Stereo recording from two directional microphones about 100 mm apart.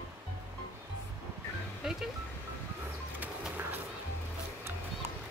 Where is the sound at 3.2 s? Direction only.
20° right (ahead or behind).